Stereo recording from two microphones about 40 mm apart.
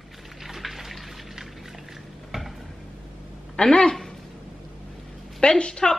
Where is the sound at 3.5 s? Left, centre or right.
Left.